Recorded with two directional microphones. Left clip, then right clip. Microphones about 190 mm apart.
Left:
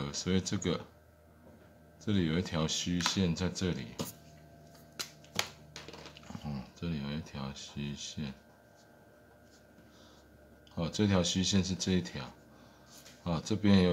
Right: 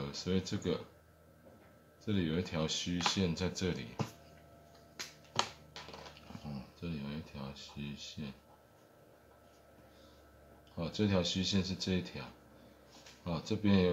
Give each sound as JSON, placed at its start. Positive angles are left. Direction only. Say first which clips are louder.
{"t": 0.0, "sound": "speech", "louder": "left 3 dB", "side_deg": 15}
{"t": 2.0, "sound": "speech", "louder": "left 3 dB", "side_deg": 15}
{"t": 6.3, "sound": "a sound", "louder": "left 7 dB", "side_deg": 20}
{"t": 10.8, "sound": "speech", "louder": "left 3 dB", "side_deg": 20}